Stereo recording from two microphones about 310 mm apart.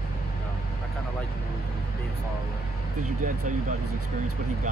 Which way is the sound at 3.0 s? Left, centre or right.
Right.